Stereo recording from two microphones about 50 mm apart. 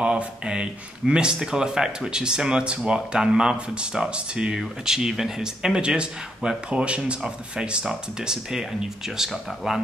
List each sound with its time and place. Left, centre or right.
0.0 s speech: centre